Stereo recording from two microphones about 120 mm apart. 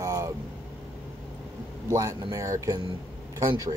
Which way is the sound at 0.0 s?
30° right (ahead or behind).